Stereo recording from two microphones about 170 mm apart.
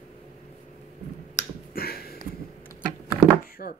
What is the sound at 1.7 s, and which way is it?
Finger snapping, 65° left (ahead or behind).